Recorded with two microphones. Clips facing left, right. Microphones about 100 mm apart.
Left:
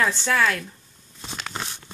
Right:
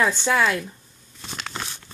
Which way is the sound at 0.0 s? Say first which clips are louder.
Right 2 dB; 15° right (ahead or behind).